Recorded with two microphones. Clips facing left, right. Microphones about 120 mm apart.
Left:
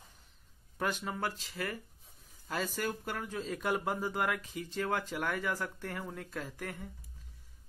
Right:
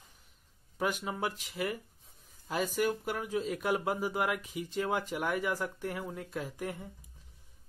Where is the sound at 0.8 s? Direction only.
10° right (ahead or behind).